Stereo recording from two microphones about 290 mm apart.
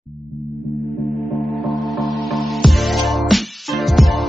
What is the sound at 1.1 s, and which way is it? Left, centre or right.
Music, centre.